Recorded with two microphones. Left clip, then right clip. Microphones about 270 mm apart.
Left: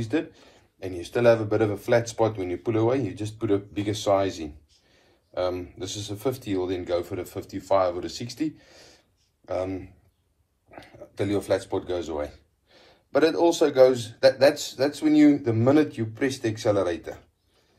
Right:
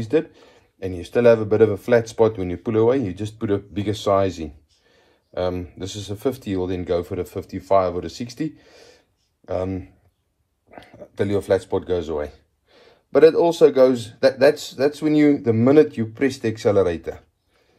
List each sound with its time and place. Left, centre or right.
0.0 s speech: right